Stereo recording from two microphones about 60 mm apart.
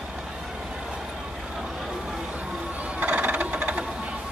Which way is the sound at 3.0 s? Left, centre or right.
Right.